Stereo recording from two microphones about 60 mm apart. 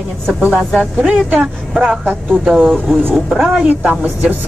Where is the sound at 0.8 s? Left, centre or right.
Centre.